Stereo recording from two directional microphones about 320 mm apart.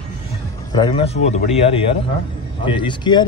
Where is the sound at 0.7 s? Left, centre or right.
Centre.